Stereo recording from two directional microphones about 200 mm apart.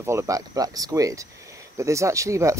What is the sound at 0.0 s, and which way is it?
Speech, 15° right (ahead or behind).